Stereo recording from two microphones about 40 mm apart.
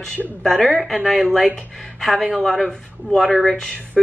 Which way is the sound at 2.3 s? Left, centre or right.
Centre.